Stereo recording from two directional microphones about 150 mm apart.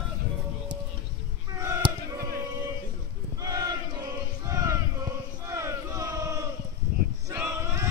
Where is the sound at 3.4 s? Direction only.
25° right (ahead or behind).